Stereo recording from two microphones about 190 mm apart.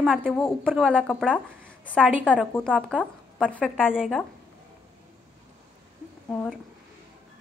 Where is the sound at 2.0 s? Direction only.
5° right (ahead or behind).